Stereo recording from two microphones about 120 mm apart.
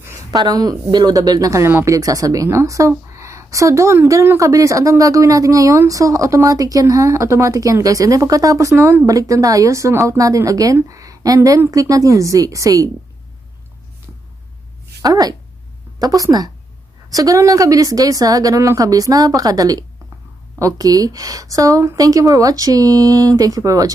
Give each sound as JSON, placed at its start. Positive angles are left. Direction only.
{"t": 0.3, "sound": "a woman's voice", "side_deg": -35}
{"t": 15.0, "sound": "a woman's voice", "side_deg": -30}